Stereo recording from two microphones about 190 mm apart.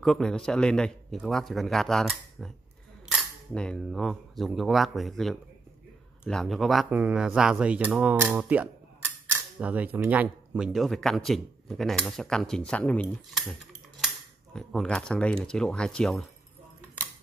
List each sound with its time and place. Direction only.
0.0 s speech: 5° left (ahead or behind)